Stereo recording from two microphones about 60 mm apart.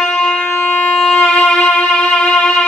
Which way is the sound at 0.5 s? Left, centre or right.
Left.